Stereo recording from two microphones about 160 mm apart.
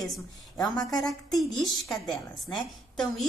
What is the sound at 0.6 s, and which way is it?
Speech, 25° left (ahead or behind).